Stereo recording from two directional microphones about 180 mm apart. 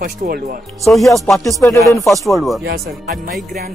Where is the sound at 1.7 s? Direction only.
20° left (ahead or behind).